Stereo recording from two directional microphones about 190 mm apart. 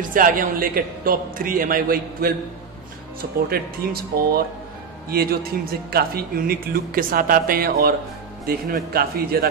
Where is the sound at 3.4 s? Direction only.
55° right (ahead or behind).